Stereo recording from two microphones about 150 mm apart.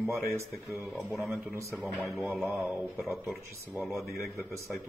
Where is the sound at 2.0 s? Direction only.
15° right (ahead or behind).